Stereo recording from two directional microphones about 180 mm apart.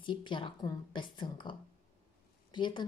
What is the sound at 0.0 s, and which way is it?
Speech, 25° left (ahead or behind).